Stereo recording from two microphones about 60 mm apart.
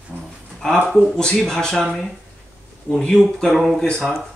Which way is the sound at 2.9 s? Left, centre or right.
Centre.